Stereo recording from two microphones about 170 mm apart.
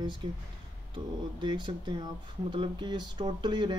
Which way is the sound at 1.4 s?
25° right (ahead or behind).